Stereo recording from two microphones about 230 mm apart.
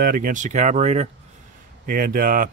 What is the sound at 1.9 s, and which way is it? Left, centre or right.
Speech, right.